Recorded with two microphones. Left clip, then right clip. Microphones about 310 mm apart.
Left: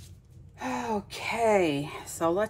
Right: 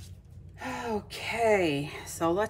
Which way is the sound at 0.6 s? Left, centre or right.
Centre.